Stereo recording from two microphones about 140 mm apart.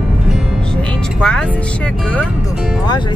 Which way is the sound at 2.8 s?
30° left (ahead or behind).